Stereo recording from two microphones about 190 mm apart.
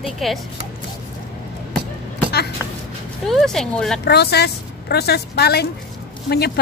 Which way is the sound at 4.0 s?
60° left (ahead or behind).